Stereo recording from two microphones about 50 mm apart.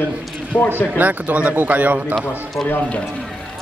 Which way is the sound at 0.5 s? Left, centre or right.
Left.